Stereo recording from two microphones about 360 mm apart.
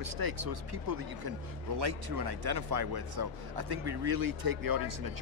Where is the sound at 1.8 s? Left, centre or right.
Right.